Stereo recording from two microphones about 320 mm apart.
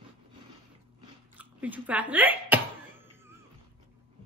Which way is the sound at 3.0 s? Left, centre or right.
Centre.